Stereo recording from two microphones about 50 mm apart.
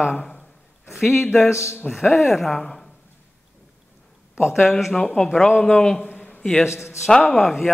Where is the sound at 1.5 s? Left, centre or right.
Left.